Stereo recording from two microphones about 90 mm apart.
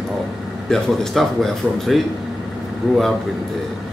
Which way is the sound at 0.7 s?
5° left (ahead or behind).